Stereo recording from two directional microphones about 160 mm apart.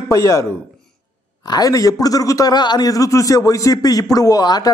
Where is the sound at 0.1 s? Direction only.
20° left (ahead or behind).